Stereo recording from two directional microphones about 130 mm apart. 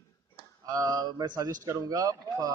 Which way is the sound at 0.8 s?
30° right (ahead or behind).